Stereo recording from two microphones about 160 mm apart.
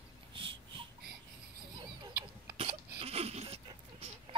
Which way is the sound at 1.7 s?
25° right (ahead or behind).